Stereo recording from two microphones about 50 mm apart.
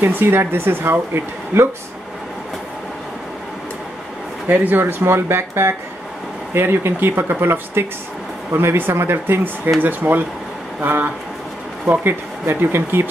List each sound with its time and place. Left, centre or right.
0.0 s speech: right
4.5 s speech: right
12.4 s speech: right